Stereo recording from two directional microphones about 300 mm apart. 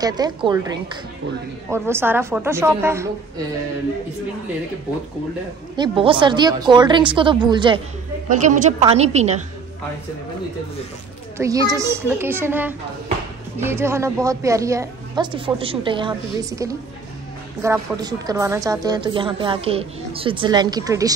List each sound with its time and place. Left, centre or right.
0.0 s a woman's voice: centre
5.8 s a woman's voice: centre
11.3 s a woman's voice: centre